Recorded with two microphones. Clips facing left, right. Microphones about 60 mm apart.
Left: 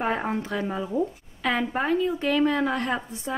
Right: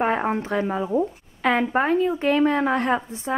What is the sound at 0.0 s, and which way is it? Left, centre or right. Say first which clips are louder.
A woman's voice: right 4 dB; right.